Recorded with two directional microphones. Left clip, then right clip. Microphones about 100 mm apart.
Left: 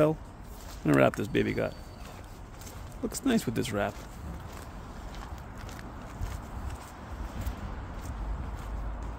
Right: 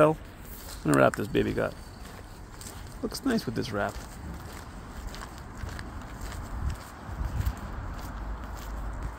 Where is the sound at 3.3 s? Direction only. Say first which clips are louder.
Left 2 dB; 40° left (ahead or behind).